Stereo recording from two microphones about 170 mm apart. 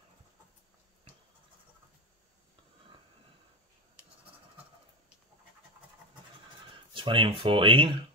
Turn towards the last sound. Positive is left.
turn(degrees=-30)  # may be behind; listen again after turning